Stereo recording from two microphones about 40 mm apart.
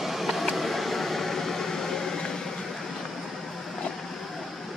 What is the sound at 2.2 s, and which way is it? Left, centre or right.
Vehicle, centre.